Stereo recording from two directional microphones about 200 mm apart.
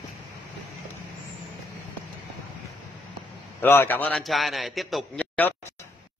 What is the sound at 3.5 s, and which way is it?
A man's voice, 10° left (ahead or behind).